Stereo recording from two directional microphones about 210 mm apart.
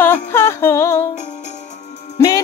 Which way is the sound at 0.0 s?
10° left (ahead or behind).